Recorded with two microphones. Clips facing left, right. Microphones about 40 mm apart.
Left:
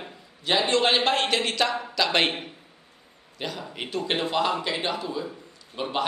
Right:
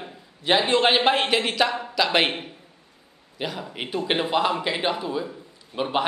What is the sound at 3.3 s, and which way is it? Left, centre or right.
A man's voice, centre.